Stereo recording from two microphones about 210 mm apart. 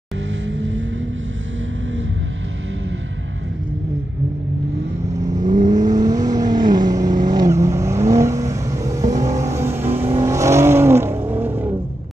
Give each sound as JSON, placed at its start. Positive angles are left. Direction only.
{"t": 0.5, "sound": "vehicle", "side_deg": -65}
{"t": 5.4, "sound": "vehicle", "side_deg": -35}
{"t": 5.9, "sound": "vehicle", "side_deg": -20}